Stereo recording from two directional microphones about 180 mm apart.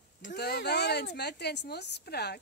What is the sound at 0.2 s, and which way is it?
Speech, 55° left (ahead or behind).